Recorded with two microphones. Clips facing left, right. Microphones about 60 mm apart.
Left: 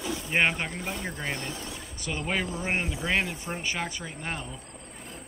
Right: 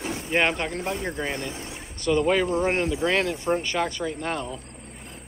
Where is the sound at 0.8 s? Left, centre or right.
Right.